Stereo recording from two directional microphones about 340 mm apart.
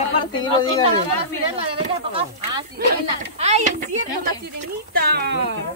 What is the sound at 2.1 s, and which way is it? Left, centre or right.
Speech, centre.